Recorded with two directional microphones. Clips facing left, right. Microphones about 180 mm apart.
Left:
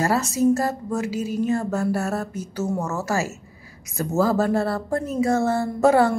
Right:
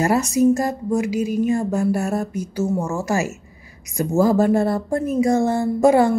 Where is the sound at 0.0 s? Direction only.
15° right (ahead or behind).